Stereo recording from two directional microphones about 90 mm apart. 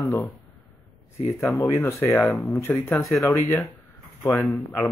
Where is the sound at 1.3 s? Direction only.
30° left (ahead or behind).